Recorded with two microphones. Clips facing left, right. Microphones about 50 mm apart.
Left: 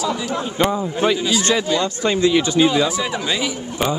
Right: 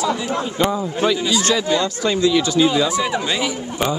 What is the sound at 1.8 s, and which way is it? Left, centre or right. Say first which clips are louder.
Speech: even; left.